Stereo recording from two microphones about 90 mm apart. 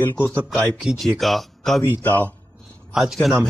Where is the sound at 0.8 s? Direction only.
Centre (ahead or behind).